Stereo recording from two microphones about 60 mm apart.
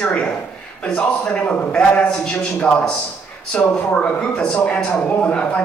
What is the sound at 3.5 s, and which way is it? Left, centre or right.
Speech, centre.